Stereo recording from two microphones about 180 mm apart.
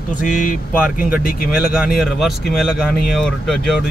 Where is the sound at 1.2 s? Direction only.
55° left (ahead or behind).